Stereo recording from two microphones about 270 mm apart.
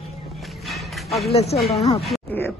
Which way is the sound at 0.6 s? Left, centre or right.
Centre.